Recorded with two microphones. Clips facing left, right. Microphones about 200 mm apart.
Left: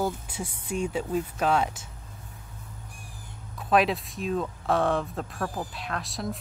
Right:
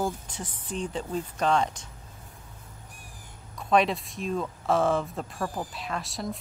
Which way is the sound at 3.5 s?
Centre (ahead or behind).